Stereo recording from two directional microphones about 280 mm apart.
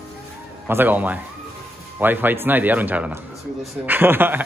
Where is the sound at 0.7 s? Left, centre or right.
Centre.